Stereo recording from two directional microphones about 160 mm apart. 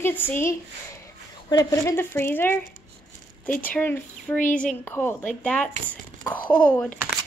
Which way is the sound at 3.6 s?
10° left (ahead or behind).